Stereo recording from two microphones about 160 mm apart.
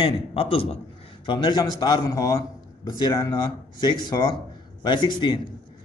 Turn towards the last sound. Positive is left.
turn(degrees=30)  # may be behind; listen again after turning